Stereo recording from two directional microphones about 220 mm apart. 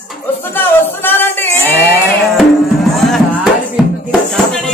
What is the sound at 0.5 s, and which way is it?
Speech, 10° left (ahead or behind).